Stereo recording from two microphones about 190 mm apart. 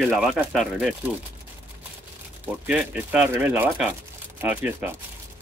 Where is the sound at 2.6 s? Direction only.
10° right (ahead or behind).